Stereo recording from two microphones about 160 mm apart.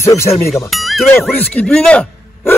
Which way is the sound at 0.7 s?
Centre (ahead or behind).